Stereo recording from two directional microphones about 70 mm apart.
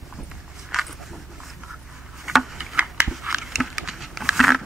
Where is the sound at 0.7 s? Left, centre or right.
Centre.